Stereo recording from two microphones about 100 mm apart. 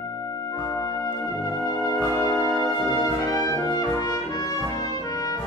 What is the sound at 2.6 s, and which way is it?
Brass instrument, 40° left (ahead or behind).